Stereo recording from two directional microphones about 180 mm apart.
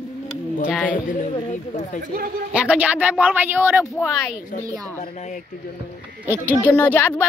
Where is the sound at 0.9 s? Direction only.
45° left (ahead or behind).